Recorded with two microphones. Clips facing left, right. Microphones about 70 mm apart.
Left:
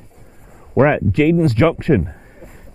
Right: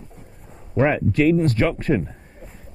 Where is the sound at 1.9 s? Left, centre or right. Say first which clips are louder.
Left 5 dB; left.